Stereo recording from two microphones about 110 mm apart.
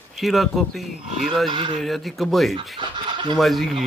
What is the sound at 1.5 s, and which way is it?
Speech, 50° right (ahead or behind).